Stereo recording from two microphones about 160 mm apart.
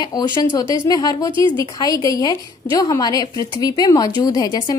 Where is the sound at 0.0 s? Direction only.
25° left (ahead or behind).